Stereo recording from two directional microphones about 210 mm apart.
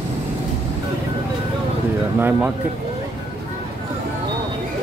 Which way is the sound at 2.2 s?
10° right (ahead or behind).